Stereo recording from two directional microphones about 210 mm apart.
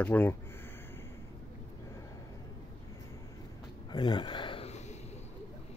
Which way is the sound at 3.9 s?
20° left (ahead or behind).